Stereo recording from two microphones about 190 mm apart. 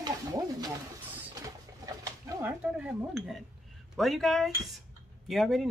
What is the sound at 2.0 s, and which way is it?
A woman's voice, 10° right (ahead or behind).